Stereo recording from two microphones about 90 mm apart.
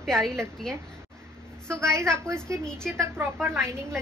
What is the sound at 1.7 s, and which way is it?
Speech, 30° right (ahead or behind).